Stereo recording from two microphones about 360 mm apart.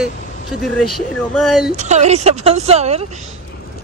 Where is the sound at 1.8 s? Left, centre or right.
Centre.